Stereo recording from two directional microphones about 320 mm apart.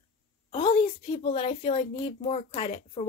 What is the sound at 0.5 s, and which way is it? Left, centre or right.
A woman's voice, centre.